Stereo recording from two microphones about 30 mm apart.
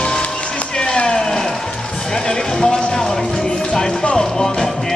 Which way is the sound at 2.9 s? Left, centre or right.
Left.